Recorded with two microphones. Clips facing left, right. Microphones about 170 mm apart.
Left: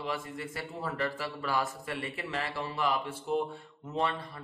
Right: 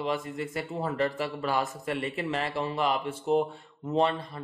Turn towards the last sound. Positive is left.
turn(degrees=-25)  # may be behind; listen again after turning